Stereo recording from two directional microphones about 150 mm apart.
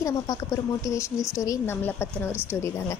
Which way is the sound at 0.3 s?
25° left (ahead or behind).